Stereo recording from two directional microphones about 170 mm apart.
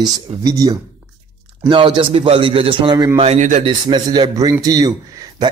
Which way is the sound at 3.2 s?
40° right (ahead or behind).